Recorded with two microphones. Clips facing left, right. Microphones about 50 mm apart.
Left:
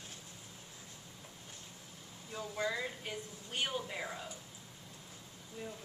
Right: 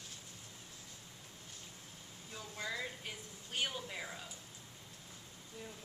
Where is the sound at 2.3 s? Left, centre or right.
Centre.